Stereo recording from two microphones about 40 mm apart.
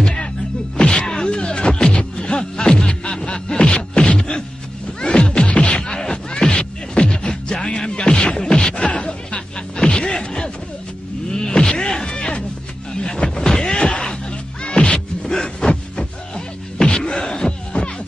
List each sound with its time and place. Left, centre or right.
0.0 s music: left
5.8 s music: centre
11.3 s a sound: centre
13.0 s slam: centre
14.6 s music: left
15.2 s a sound: centre